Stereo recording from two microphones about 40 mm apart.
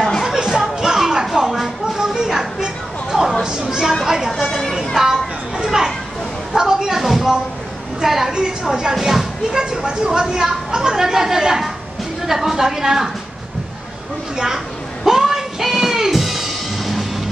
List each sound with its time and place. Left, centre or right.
0.5 s music: centre
3.4 s a sound: centre
5.7 s children playing: centre
6.5 s a sound: centre
8.9 s a woman's voice: centre
14.3 s a woman's voice: centre
15.0 s music: centre